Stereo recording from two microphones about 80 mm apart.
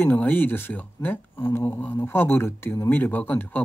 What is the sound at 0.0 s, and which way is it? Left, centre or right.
Speech, left.